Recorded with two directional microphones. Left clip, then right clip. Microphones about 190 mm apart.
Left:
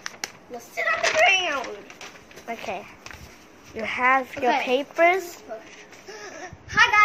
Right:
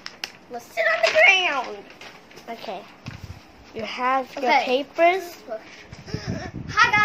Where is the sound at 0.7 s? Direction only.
15° right (ahead or behind).